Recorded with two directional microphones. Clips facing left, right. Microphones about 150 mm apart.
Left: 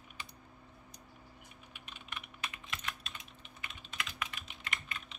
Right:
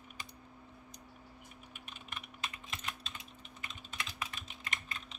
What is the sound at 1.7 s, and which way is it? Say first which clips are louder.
Typing: left 1 dB; 45° right (ahead or behind).